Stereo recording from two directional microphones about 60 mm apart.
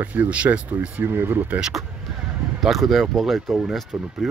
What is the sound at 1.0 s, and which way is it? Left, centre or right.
Speech, right.